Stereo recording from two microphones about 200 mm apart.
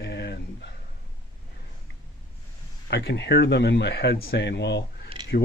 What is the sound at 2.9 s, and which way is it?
A man's voice, 55° left (ahead or behind).